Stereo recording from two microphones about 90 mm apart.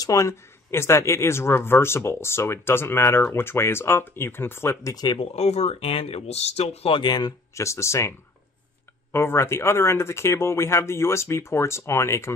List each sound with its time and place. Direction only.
0.0 s speech: 35° left (ahead or behind)
4.9 s speech: 55° left (ahead or behind)
5.8 s speech: 90° left
7.1 s speech: 50° left (ahead or behind)
7.5 s speech: 35° left (ahead or behind)
9.1 s speech: 30° left (ahead or behind)